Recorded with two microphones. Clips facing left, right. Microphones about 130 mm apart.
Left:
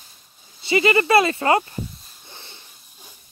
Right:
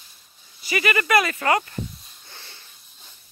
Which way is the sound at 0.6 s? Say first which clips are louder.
Left 6 dB; 25° left (ahead or behind).